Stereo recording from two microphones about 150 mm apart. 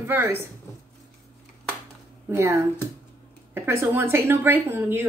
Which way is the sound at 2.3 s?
20° right (ahead or behind).